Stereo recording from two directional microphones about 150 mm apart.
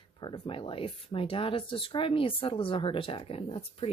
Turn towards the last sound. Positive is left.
turn(degrees=40)  # may be behind; listen again after turning